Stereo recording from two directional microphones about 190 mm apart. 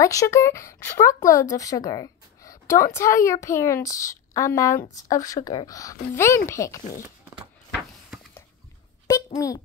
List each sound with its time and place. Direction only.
0.0 s a woman's voice: 15° left (ahead or behind)
9.0 s a child's voice: 20° left (ahead or behind)